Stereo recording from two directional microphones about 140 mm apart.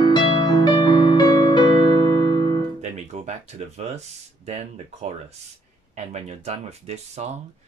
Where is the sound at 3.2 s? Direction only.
55° right (ahead or behind).